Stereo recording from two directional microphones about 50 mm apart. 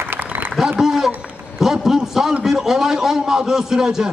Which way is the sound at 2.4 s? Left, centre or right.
Centre.